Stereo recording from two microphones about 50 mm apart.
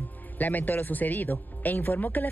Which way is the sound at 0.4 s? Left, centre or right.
Left.